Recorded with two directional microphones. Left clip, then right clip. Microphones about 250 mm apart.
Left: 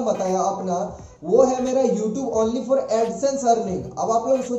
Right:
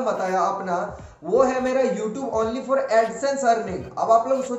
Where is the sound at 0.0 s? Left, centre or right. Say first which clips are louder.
Left 1 dB; centre.